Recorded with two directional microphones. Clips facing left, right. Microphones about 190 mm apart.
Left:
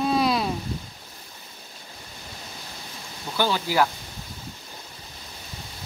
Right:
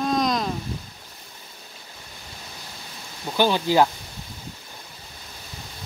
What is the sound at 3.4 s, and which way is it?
Speech, 20° right (ahead or behind).